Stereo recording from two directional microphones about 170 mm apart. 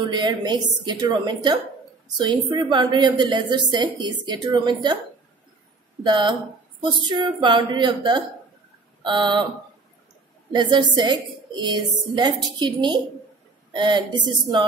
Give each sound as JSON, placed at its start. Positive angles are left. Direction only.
{"t": 0.1, "sound": "a woman's voice", "side_deg": -25}
{"t": 6.0, "sound": "a woman's voice", "side_deg": -25}
{"t": 10.5, "sound": "a woman's voice", "side_deg": -25}